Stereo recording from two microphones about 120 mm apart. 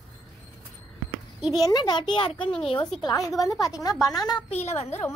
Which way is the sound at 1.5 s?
35° left (ahead or behind).